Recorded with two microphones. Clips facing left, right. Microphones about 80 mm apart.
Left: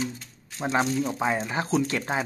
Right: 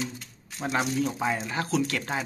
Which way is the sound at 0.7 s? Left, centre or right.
Centre.